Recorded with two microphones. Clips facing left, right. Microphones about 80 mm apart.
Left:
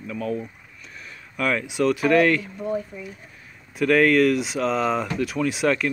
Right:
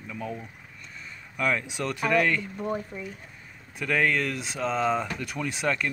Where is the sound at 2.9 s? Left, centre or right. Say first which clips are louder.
Even; right.